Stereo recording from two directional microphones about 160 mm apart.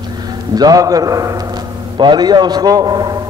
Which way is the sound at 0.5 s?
25° right (ahead or behind).